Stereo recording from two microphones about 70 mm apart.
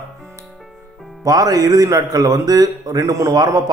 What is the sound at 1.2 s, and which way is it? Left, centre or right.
Speech, right.